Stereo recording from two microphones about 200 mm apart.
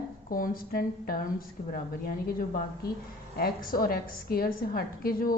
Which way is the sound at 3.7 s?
50° left (ahead or behind).